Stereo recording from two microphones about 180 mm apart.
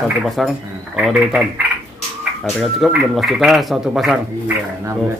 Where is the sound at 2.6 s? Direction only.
Centre (ahead or behind).